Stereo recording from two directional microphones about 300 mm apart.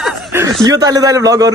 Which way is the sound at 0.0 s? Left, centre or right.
Centre.